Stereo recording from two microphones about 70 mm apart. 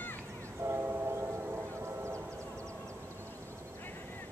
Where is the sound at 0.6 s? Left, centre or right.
Right.